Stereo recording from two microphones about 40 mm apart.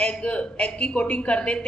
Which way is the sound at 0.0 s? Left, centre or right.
Left.